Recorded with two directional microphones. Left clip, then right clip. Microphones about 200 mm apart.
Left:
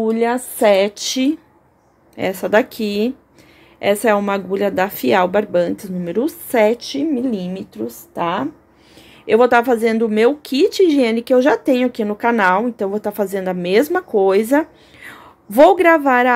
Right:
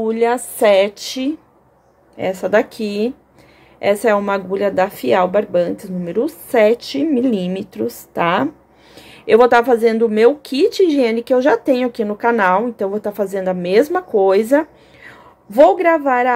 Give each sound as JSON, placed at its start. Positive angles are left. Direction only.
{"t": 0.0, "sound": "a woman's voice", "side_deg": 20}
{"t": 6.8, "sound": "speech", "side_deg": -5}